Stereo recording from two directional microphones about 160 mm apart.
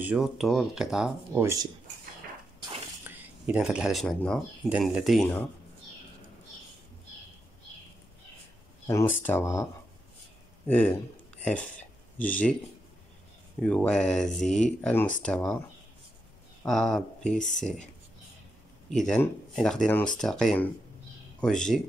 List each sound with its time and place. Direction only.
0.0 s speech: 5° right (ahead or behind)
1.3 s speech: 15° right (ahead or behind)
3.0 s speech: 10° right (ahead or behind); by 5.5 s 5° left (ahead or behind)
8.8 s speech: 15° left (ahead or behind)
12.2 s speech: 10° left (ahead or behind)
13.6 s speech: 5° left (ahead or behind)
16.6 s speech: 5° left (ahead or behind)
18.9 s speech: 5° left (ahead or behind)